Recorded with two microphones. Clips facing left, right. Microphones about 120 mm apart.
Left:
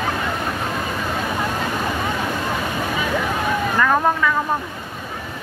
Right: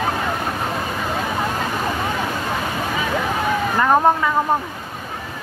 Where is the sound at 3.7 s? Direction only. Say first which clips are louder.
Right 3 dB; 25° right (ahead or behind).